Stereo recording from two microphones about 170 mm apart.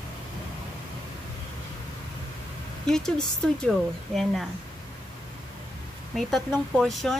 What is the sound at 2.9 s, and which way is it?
Speech, 5° left (ahead or behind).